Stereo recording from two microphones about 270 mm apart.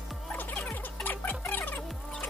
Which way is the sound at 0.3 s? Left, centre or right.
Centre.